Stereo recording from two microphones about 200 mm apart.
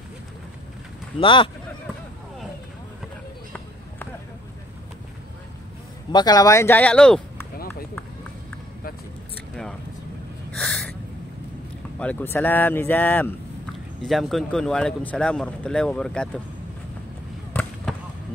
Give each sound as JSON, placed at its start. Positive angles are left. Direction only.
{"t": 1.2, "sound": "speech", "side_deg": 25}
{"t": 6.1, "sound": "speech", "side_deg": 20}
{"t": 10.5, "sound": "a sound", "side_deg": 5}
{"t": 12.0, "sound": "speech", "side_deg": 10}
{"t": 17.5, "sound": "basketball bounce", "side_deg": 5}